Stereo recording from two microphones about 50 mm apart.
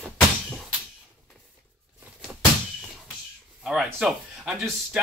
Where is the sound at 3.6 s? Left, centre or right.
Centre.